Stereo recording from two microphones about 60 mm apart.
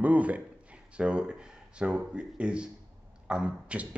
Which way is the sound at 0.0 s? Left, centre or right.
Right.